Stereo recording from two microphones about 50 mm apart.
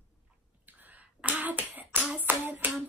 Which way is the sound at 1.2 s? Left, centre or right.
Right.